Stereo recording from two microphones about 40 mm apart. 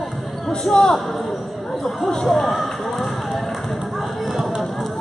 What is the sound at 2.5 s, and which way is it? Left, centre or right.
Basketball bounce, centre.